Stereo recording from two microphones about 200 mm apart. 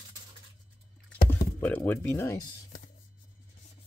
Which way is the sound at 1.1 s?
10° left (ahead or behind).